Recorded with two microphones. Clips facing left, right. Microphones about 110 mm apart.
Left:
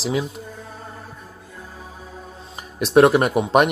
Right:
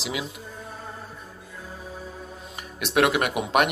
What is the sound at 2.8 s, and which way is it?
Speech, 35° left (ahead or behind).